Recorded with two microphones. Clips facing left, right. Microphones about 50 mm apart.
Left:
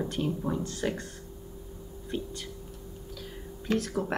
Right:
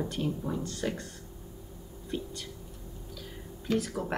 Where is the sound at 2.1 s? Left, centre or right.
Centre.